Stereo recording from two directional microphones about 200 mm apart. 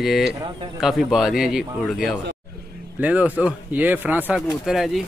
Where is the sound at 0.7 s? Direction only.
Centre (ahead or behind).